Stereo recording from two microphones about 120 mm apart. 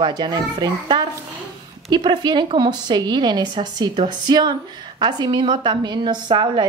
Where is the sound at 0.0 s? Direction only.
40° right (ahead or behind).